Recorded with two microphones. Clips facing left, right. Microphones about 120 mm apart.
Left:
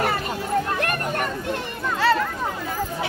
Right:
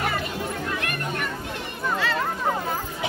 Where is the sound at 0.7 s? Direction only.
45° left (ahead or behind).